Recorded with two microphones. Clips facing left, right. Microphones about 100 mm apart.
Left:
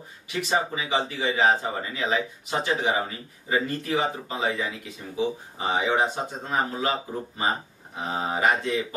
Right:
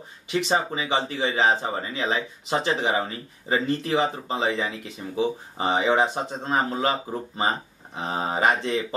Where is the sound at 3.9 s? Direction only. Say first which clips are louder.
Right 3 dB; 30° right (ahead or behind).